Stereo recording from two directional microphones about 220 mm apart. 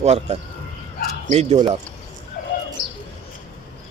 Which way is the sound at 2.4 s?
40° left (ahead or behind).